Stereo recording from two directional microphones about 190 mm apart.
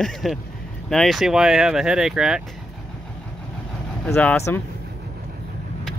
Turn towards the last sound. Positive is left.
turn(degrees=10)  # may be behind; listen again after turning